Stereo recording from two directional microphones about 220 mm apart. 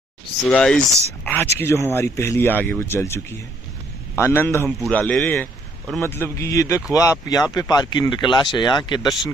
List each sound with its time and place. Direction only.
0.5 s a man's voice: 5° left (ahead or behind)